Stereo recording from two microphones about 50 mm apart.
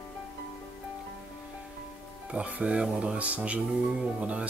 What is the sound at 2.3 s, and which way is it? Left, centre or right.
Speech, right.